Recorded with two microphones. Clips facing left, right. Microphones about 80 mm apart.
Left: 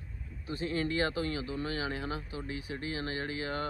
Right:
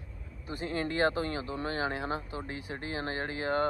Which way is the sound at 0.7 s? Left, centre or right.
Right.